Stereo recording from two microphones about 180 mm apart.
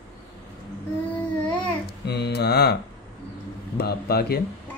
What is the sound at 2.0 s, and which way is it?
Mantra, 65° left (ahead or behind).